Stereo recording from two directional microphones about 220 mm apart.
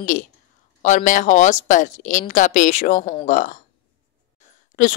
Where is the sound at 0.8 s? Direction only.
35° left (ahead or behind).